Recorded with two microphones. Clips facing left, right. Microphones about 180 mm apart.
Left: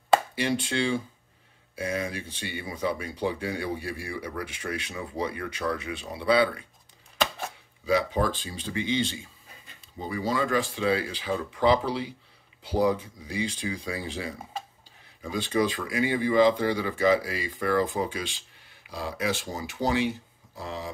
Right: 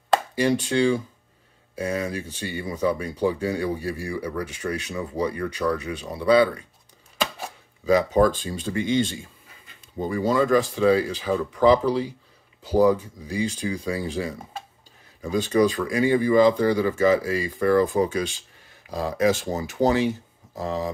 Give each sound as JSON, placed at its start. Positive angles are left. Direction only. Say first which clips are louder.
{"t": 0.4, "sound": "speech", "louder": "right 6 dB", "side_deg": -40}
{"t": 7.8, "sound": "speech", "louder": "right 7 dB", "side_deg": -45}